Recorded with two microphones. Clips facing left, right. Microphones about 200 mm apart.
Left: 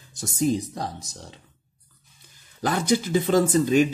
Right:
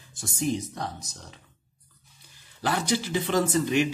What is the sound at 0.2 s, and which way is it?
Speech, 35° left (ahead or behind).